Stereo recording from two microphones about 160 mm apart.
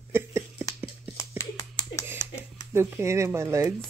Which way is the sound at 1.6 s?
25° left (ahead or behind).